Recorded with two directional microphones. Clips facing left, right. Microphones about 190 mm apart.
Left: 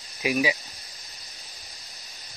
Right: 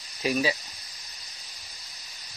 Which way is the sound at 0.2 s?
15° left (ahead or behind).